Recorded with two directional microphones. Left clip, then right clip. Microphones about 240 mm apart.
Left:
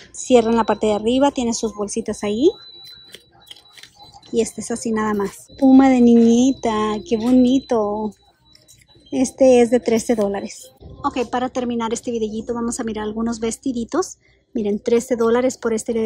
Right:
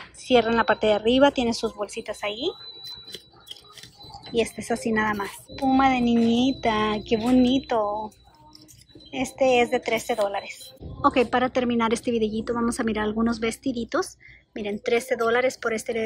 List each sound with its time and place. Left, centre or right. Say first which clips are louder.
0.1 s a woman's voice: left 5 dB; left
4.3 s a woman's voice: left 3 dB; left
9.5 s a woman's voice: left 7 dB; left
11.0 s a woman's voice: right 1 dB; centre